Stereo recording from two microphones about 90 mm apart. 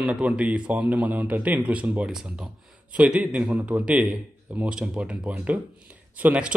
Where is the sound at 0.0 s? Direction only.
10° right (ahead or behind).